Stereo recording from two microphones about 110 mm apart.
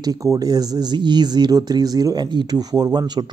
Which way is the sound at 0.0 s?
30° right (ahead or behind).